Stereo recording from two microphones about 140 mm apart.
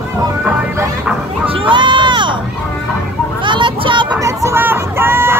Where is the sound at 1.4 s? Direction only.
40° right (ahead or behind).